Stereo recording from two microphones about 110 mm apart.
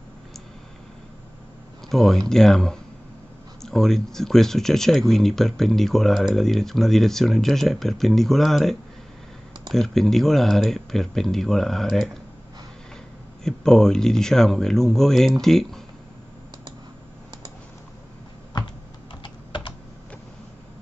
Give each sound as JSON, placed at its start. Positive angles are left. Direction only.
{"t": 1.9, "sound": "speech", "side_deg": 0}
{"t": 13.4, "sound": "speech", "side_deg": 5}
{"t": 19.2, "sound": "typing", "side_deg": 45}